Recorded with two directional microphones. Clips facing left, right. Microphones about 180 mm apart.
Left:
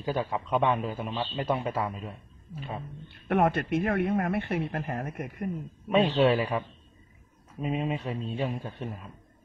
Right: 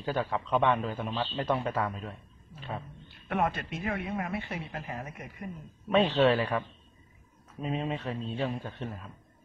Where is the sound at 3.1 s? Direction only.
55° left (ahead or behind).